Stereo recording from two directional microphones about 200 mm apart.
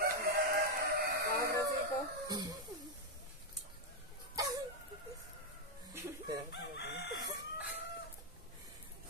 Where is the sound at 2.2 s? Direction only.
20° right (ahead or behind).